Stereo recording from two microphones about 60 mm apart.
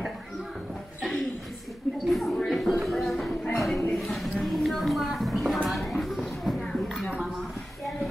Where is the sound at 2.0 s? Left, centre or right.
Centre.